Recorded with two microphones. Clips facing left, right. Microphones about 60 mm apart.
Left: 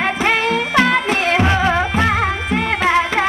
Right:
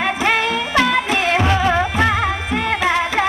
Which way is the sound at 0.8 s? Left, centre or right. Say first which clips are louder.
Left 1 dB; left.